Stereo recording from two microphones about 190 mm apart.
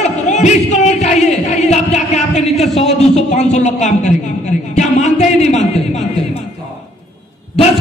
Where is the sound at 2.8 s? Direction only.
35° left (ahead or behind).